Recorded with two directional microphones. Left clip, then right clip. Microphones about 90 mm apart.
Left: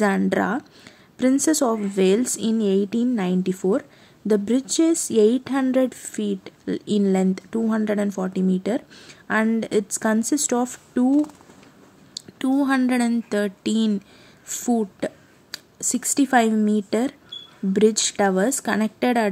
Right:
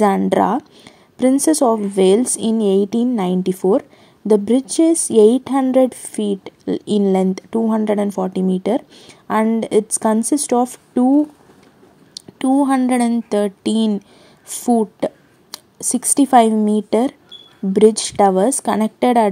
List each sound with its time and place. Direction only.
0.3 s speech: 35° right (ahead or behind)
0.6 s a woman's voice: 25° right (ahead or behind)
4.3 s a woman's voice: 25° right (ahead or behind)
12.1 s a sound: 20° right (ahead or behind)
12.8 s a woman's voice: 30° right (ahead or behind)